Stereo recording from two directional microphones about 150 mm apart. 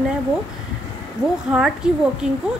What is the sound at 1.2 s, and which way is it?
Speech, 20° left (ahead or behind).